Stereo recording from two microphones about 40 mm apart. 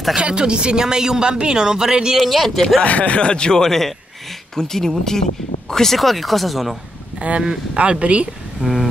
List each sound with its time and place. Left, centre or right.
0.2 s speech: right
2.1 s speech: centre
2.8 s a man's voice: left; by 6.8 s centre
7.2 s speech: right